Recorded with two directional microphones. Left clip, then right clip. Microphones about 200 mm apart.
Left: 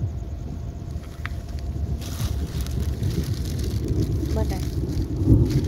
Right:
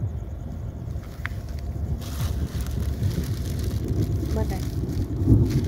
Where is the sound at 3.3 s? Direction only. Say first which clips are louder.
Left 2 dB; centre (ahead or behind).